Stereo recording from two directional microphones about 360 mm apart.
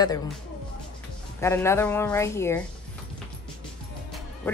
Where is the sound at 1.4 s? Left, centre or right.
Centre.